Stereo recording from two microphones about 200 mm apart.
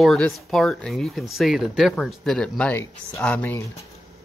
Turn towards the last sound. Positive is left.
turn(degrees=10)  # may be behind; listen again after turning